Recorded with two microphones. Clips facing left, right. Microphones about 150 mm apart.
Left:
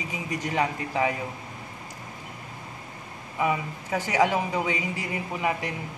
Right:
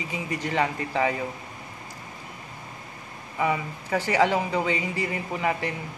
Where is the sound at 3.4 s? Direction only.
15° left (ahead or behind).